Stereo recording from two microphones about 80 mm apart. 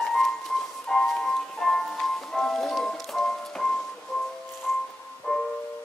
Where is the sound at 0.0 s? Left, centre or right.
Centre.